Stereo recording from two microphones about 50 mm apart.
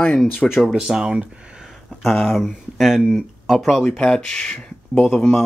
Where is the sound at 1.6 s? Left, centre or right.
Centre.